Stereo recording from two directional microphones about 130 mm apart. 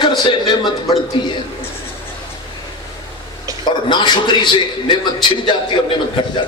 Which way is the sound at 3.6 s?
35° left (ahead or behind).